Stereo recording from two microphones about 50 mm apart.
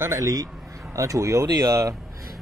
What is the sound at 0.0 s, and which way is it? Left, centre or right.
Speech, right.